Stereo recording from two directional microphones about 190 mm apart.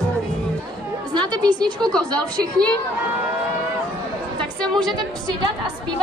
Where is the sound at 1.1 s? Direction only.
20° right (ahead or behind).